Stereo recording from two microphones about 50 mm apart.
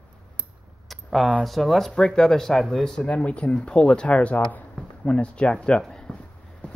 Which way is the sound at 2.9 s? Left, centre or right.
Left.